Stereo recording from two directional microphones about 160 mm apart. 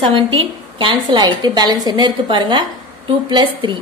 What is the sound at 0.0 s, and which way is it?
A woman's voice, 35° right (ahead or behind).